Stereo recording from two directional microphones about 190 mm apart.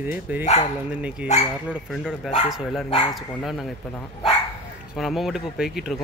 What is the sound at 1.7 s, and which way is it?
Speech, 5° right (ahead or behind).